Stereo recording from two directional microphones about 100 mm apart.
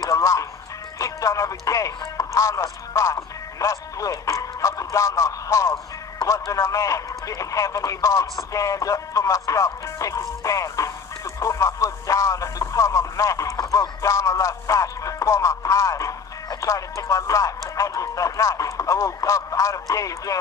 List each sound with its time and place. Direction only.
0.0 s music: 30° left (ahead or behind)
0.9 s speech: 35° left (ahead or behind)